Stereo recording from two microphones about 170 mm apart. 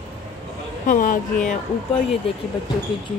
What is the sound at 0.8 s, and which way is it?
Speech, 50° left (ahead or behind).